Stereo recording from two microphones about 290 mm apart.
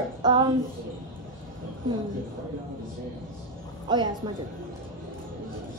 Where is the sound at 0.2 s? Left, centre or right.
Centre.